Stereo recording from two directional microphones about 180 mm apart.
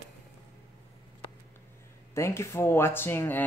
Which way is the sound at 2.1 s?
15° left (ahead or behind).